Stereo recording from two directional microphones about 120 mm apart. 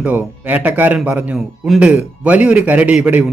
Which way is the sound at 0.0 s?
15° right (ahead or behind).